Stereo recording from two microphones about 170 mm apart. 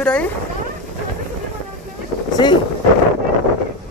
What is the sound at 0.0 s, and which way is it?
Speech, 5° left (ahead or behind).